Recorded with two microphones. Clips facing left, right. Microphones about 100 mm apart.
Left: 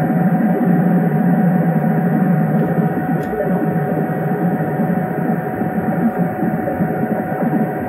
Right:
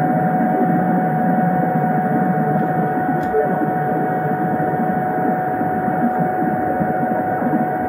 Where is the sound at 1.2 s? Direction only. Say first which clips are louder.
Left 1 dB; 5° right (ahead or behind).